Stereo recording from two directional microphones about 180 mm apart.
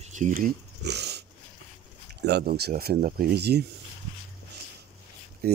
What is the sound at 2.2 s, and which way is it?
Speech, 65° right (ahead or behind).